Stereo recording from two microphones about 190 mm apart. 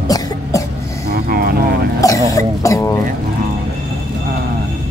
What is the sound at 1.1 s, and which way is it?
Vehicle, 55° right (ahead or behind).